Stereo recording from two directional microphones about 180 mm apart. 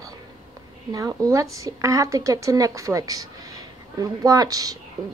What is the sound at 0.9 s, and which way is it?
Speech, 20° right (ahead or behind).